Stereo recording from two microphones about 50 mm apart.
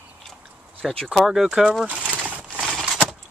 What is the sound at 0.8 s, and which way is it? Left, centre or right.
Speech, centre.